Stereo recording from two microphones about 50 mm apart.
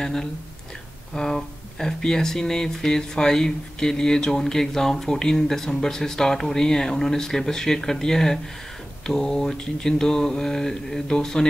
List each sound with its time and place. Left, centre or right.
0.0 s speech: centre